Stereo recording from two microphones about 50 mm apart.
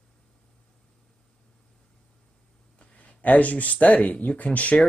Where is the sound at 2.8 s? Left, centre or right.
Left.